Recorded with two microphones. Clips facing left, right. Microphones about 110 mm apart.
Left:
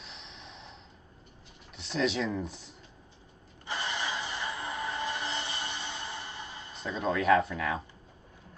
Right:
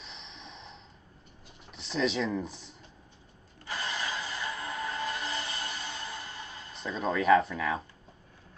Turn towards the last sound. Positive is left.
turn(degrees=0)  # may be behind; listen again after turning